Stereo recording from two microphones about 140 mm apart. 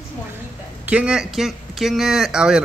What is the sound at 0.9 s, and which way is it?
Speech, 10° right (ahead or behind).